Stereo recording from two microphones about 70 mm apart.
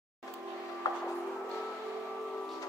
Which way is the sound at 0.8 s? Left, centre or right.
Left.